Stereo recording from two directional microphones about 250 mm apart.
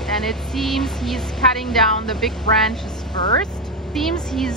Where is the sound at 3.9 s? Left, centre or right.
Centre.